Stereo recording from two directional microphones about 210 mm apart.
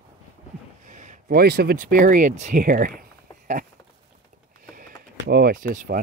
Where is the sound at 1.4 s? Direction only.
50° right (ahead or behind).